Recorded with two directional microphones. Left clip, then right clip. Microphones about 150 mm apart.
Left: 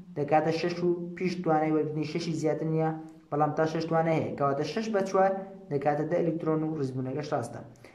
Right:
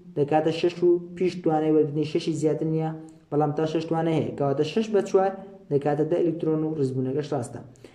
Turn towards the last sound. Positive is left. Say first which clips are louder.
# right 4 dB
turn(degrees=-25)  # may be behind; listen again after turning